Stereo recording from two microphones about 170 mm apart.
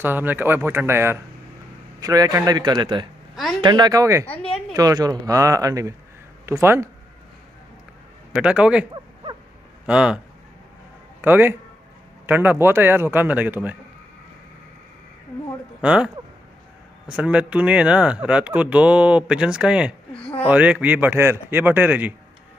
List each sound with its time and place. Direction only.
0.0 s speech: 10° right (ahead or behind)
4.3 s a sound: 5° left (ahead or behind)
4.7 s speech: 20° right (ahead or behind)
8.4 s a man's voice: 5° right (ahead or behind)
8.9 s a sound: 25° right (ahead or behind)
9.8 s a man's voice: 5° right (ahead or behind)
15.8 s a man's voice: 5° right (ahead or behind)
17.1 s speech: 5° right (ahead or behind)